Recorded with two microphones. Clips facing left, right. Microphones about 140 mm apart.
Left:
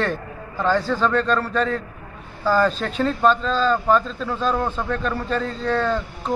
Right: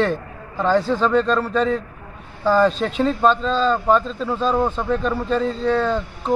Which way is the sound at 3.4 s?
35° right (ahead or behind).